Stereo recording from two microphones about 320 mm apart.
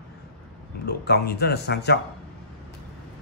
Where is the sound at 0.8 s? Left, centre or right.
Left.